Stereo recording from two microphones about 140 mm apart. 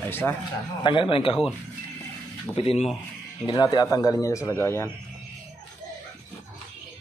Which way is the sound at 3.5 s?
30° left (ahead or behind).